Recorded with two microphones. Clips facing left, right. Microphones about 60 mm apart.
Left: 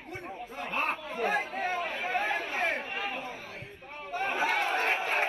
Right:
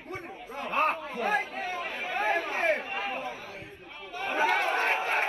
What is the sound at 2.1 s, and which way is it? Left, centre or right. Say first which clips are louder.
Chatter: right 4 dB; right.